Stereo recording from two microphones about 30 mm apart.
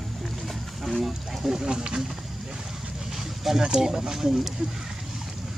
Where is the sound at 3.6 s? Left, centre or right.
Right.